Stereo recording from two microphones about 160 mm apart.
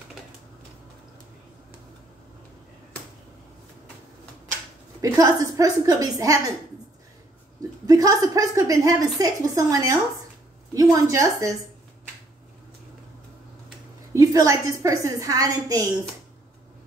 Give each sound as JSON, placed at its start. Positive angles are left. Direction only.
{"t": 5.0, "sound": "a woman's voice", "side_deg": -20}
{"t": 7.8, "sound": "a woman's voice", "side_deg": -20}
{"t": 14.1, "sound": "a woman's voice", "side_deg": -20}